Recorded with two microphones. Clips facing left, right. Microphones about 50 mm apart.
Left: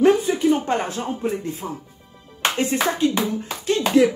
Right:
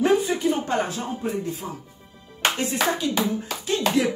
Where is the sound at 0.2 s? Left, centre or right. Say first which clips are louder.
Left 4 dB; left.